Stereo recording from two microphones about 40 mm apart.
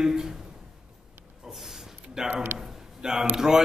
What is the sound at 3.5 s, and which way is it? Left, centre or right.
Speech, centre.